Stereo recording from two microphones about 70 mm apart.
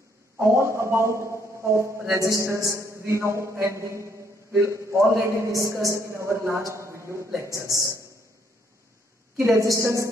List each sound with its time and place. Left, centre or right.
0.4 s a man's voice: right
7.5 s a man's voice: right
9.4 s a man's voice: right